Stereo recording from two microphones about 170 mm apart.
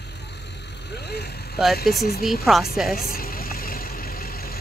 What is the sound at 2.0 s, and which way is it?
Speech, 60° left (ahead or behind).